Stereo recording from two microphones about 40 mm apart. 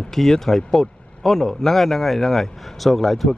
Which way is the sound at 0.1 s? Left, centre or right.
Centre.